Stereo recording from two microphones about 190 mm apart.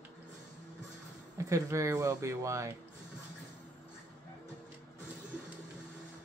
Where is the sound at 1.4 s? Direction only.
15° right (ahead or behind).